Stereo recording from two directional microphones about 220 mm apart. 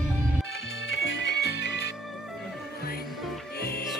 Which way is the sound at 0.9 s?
60° left (ahead or behind).